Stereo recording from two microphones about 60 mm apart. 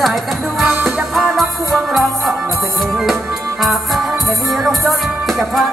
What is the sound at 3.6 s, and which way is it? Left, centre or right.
Music, centre.